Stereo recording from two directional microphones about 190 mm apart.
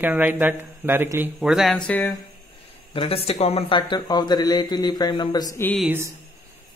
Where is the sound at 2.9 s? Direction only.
30° left (ahead or behind).